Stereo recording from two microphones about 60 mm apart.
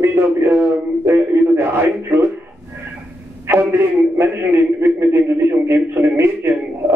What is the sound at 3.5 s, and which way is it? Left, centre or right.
A man's voice, right.